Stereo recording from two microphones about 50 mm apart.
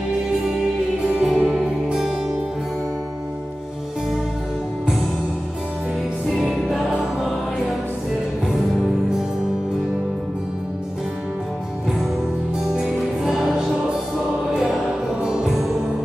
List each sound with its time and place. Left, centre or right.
0.6 s music: centre
6.3 s music: centre
12.6 s music: centre
15.2 s music: centre